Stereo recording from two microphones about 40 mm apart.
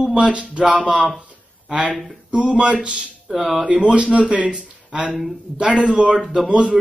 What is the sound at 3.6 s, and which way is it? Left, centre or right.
Speech, right.